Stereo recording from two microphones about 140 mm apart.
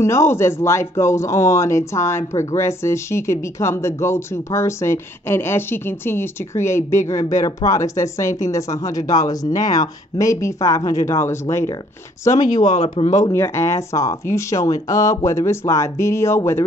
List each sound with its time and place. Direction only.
0.0 s speech: 20° left (ahead or behind)
12.4 s speech: 60° left (ahead or behind)
13.3 s speech: 20° left (ahead or behind)